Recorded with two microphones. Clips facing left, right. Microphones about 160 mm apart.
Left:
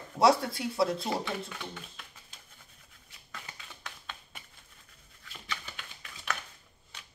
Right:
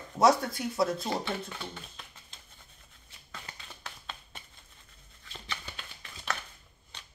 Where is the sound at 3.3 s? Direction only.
30° right (ahead or behind).